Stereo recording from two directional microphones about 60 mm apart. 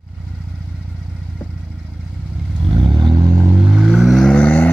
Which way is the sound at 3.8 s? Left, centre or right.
Centre.